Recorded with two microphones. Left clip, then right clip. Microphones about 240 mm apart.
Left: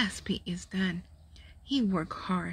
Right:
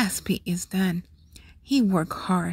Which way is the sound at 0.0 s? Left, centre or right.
Right.